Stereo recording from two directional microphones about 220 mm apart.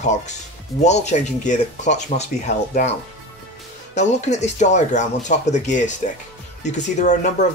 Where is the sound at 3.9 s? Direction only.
30° left (ahead or behind).